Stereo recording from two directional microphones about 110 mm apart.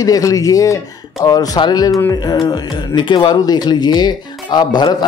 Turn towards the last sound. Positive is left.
turn(degrees=40)  # may be behind; listen again after turning